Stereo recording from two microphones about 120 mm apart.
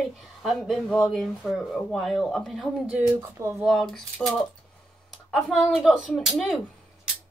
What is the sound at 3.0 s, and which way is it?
Speech, 25° right (ahead or behind).